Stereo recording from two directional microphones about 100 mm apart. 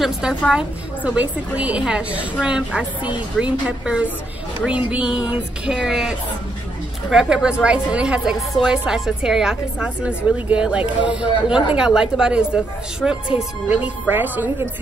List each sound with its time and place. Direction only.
0.0 s a woman's voice: 10° right (ahead or behind)